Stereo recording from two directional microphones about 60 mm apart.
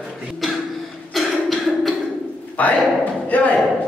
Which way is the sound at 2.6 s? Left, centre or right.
Left.